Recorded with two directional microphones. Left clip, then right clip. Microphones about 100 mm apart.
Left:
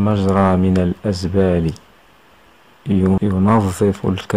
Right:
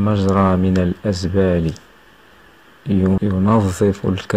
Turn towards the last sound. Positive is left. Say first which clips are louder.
# even
turn(degrees=15)  # may be behind; listen again after turning